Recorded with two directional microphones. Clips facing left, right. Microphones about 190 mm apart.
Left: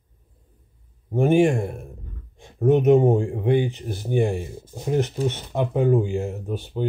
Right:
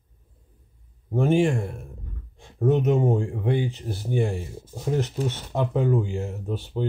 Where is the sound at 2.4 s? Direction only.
20° left (ahead or behind).